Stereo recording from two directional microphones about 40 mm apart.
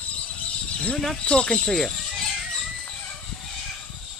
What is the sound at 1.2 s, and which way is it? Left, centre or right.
Speech, left.